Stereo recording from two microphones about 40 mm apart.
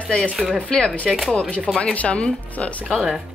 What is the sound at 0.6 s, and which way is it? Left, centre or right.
Speech, centre.